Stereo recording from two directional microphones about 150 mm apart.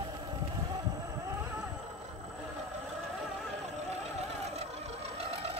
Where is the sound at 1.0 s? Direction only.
15° right (ahead or behind).